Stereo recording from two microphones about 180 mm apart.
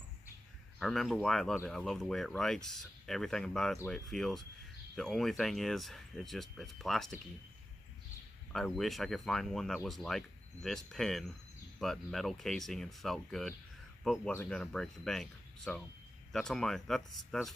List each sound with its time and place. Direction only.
0.7 s speech: centre (ahead or behind)
8.5 s speech: centre (ahead or behind)